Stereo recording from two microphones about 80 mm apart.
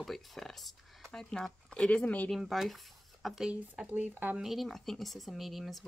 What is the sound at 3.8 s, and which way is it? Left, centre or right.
Speech, right.